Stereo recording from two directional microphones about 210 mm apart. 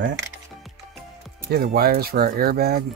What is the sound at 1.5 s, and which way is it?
Speech, 45° right (ahead or behind).